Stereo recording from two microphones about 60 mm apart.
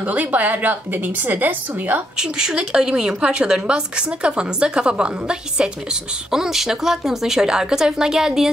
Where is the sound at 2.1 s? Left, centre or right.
Centre.